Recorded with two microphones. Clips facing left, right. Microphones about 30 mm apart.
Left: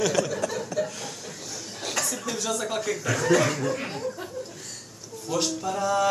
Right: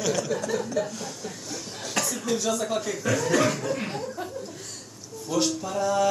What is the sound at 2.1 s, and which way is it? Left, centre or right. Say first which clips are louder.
Speech: right 3 dB; centre.